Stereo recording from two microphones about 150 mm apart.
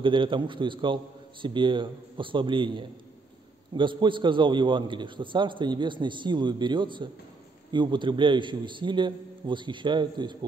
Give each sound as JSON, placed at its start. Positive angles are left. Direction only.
{"t": 0.0, "sound": "a man's voice", "side_deg": -35}